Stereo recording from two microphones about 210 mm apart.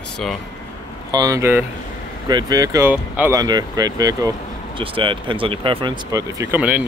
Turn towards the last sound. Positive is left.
turn(degrees=-5)  # may be behind; listen again after turning